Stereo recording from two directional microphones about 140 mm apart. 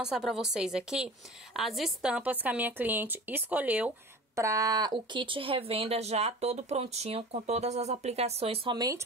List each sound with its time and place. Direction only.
0.0 s a woman's voice: 5° right (ahead or behind)
4.4 s speech: 25° right (ahead or behind); by 8.7 s 45° right (ahead or behind)
8.7 s speech: 25° right (ahead or behind)